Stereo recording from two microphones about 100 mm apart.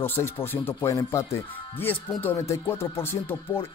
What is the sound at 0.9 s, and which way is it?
Speech, 35° left (ahead or behind).